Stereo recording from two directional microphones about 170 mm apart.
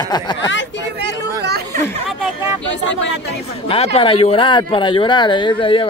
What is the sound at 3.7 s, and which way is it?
Speech, 35° left (ahead or behind).